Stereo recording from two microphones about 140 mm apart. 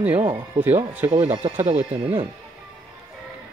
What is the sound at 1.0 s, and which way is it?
Speech, 20° right (ahead or behind).